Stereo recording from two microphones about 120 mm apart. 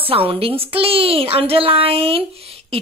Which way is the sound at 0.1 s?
50° right (ahead or behind).